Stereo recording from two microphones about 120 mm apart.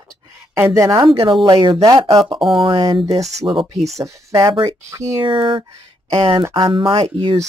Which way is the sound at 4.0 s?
25° right (ahead or behind).